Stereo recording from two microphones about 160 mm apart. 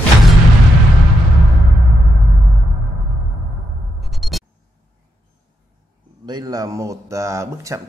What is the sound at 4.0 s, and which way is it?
Music, centre (ahead or behind).